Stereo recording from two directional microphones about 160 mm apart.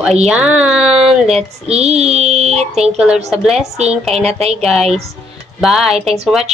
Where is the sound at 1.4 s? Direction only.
40° right (ahead or behind).